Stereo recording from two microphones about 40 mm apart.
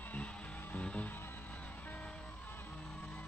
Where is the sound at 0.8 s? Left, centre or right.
Left.